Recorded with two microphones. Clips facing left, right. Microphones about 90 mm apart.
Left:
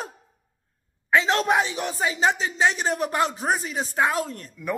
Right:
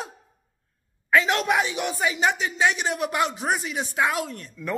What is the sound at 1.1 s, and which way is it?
Speech, 30° left (ahead or behind).